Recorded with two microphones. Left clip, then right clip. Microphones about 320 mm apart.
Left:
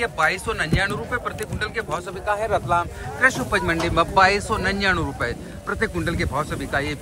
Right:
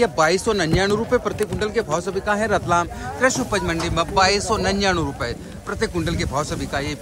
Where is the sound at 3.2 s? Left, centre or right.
Centre.